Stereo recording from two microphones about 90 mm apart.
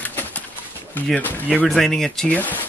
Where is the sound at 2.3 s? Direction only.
20° left (ahead or behind).